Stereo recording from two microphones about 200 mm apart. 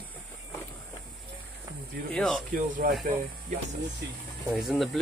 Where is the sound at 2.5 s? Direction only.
40° right (ahead or behind).